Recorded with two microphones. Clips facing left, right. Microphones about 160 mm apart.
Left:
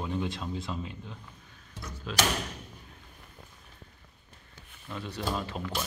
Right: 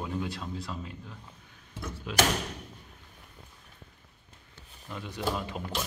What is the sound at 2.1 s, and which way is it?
Speech, 10° right (ahead or behind).